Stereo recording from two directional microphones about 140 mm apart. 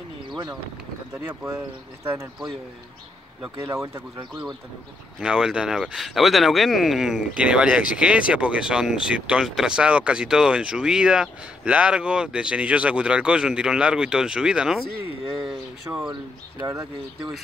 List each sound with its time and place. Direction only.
1.2 s speech: 15° right (ahead or behind)
3.5 s speech: 20° right (ahead or behind)
5.2 s speech: 5° right (ahead or behind)
16.5 s speech: 20° right (ahead or behind)